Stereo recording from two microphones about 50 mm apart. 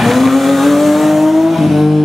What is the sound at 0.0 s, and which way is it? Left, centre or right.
Vehicle, centre.